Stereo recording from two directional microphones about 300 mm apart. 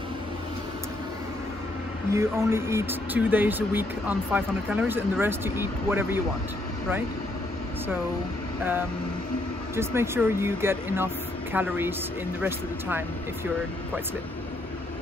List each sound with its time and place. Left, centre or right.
2.1 s speech: centre
9.8 s speech: centre